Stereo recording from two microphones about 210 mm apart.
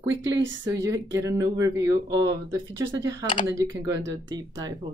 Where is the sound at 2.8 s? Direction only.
60° right (ahead or behind).